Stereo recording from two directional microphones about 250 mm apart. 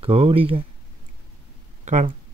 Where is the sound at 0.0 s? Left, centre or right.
Right.